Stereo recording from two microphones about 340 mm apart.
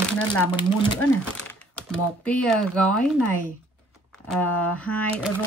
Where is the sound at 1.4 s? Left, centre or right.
Centre.